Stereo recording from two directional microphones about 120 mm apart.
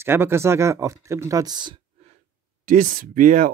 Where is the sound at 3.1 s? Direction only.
90° right.